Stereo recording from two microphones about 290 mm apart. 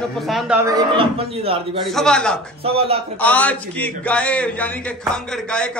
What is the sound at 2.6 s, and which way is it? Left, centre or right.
Speech, centre.